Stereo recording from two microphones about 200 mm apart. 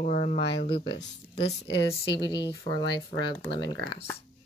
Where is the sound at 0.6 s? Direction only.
25° left (ahead or behind).